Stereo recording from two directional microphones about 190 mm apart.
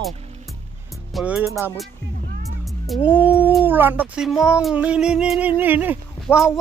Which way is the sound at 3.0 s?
10° right (ahead or behind).